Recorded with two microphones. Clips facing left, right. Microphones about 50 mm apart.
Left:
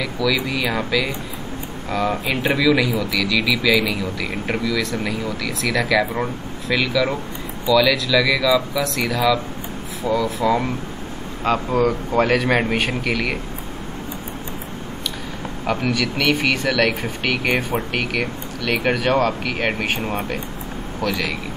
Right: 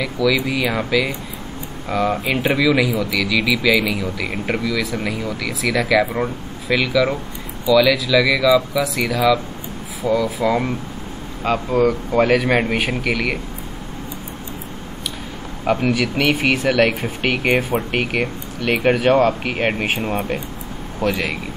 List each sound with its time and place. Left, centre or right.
0.0 s speech: centre
4.5 s speech: centre
15.6 s speech: centre